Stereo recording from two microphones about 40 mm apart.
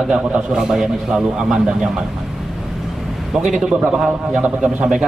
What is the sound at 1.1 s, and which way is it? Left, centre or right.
Speech, right.